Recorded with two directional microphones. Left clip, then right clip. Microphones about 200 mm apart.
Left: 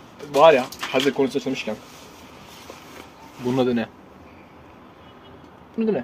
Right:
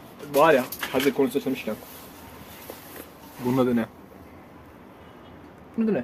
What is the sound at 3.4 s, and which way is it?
Speech, 5° left (ahead or behind).